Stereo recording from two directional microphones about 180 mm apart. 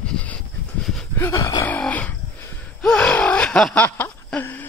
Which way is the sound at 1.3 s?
20° left (ahead or behind).